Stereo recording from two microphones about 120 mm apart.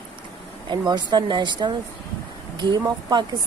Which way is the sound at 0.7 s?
40° right (ahead or behind).